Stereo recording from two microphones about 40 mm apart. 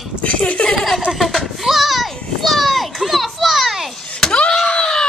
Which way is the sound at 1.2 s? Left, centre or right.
Centre.